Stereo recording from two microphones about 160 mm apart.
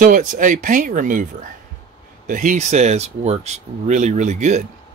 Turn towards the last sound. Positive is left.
turn(degrees=-50)  # may be behind; listen again after turning